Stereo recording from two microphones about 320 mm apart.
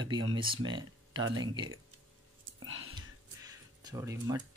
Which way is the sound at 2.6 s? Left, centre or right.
Right.